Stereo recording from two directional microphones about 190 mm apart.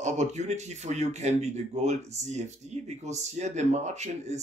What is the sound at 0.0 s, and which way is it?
Speech, 35° right (ahead or behind).